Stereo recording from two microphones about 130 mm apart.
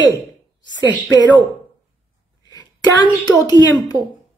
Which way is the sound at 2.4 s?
30° left (ahead or behind).